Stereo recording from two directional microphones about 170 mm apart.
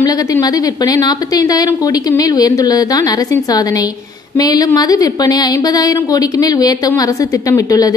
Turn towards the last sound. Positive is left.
turn(degrees=20)  # may be behind; listen again after turning